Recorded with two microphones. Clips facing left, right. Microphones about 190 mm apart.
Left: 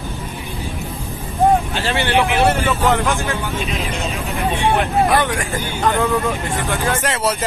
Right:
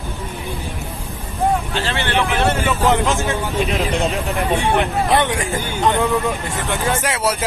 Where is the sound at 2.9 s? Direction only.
20° right (ahead or behind).